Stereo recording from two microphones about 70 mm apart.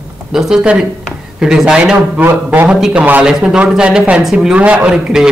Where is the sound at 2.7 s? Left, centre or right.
Centre.